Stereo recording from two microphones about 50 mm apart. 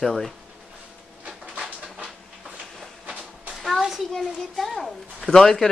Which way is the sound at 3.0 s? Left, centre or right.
Right.